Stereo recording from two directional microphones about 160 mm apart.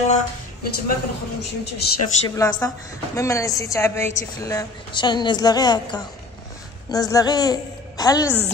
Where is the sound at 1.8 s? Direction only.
85° left.